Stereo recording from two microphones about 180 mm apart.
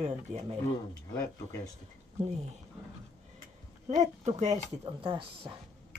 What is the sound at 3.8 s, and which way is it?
Speech, 40° right (ahead or behind).